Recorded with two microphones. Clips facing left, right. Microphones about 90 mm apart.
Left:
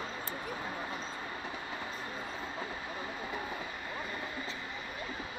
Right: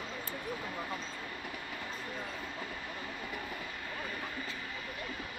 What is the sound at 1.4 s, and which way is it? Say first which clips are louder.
Train: left 2 dB; 25° left (ahead or behind).